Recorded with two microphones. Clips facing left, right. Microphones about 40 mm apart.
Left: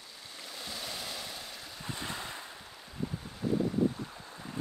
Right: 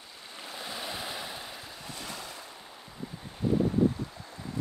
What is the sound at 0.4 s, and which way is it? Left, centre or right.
Waves, right.